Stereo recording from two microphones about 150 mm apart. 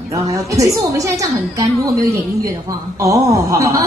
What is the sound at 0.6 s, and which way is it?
A woman's voice, 20° right (ahead or behind).